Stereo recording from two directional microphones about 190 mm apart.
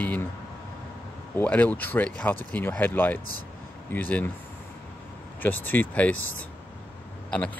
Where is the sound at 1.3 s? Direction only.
10° left (ahead or behind).